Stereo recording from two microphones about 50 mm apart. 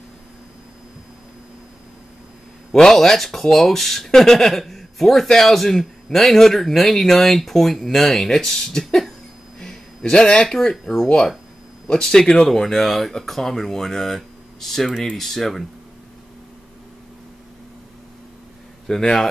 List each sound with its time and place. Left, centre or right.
2.7 s speech: centre
9.6 s a sound: centre
11.9 s speech: centre
18.9 s speech: centre